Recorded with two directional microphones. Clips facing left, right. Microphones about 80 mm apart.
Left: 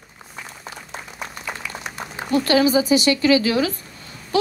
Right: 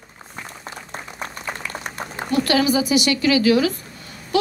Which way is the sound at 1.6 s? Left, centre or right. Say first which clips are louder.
Right 1 dB; right.